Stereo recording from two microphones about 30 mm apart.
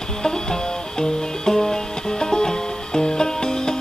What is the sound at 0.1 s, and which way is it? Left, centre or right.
Music, left.